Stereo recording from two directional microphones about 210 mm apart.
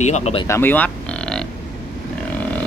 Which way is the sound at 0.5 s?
10° left (ahead or behind).